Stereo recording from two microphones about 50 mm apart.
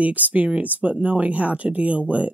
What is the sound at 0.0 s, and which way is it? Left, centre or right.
Speech, right.